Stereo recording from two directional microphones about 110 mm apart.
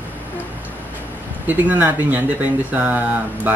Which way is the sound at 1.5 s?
15° right (ahead or behind).